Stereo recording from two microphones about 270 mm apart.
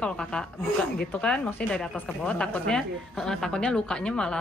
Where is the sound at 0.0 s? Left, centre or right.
Centre.